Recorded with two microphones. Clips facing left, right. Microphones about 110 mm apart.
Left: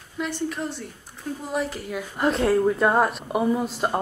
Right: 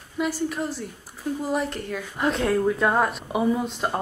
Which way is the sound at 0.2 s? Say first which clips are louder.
Right 2 dB; 5° right (ahead or behind).